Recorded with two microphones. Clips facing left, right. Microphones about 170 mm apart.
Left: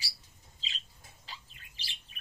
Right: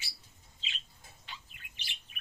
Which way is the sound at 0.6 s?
35° left (ahead or behind).